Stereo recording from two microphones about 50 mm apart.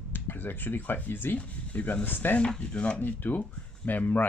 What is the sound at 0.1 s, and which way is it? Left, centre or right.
Speech, left.